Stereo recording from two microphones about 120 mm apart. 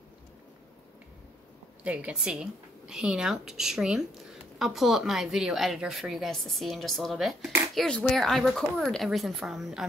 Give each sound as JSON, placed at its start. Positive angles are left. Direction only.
{"t": 1.8, "sound": "a woman's voice", "side_deg": -10}